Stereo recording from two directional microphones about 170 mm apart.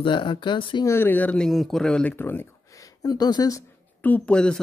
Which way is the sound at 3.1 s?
25° left (ahead or behind).